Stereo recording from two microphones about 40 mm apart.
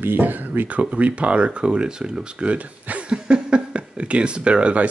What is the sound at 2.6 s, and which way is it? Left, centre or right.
Throat clearing, right.